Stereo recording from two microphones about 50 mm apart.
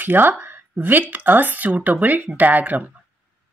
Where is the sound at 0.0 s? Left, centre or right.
Right.